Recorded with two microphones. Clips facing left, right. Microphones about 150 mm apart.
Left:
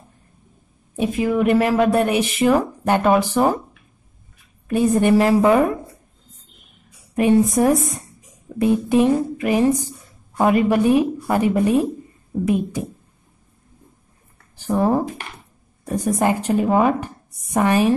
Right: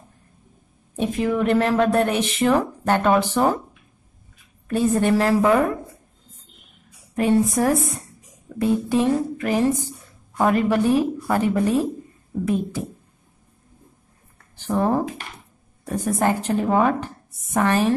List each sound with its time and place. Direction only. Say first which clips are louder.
0.9 s a woman's voice: left 2 dB; 5° left (ahead or behind)
4.6 s a woman's voice: left 3 dB; 15° left (ahead or behind)
7.2 s a woman's voice: left 3 dB; 15° left (ahead or behind)
14.6 s a woman's voice: left 2 dB; 10° left (ahead or behind)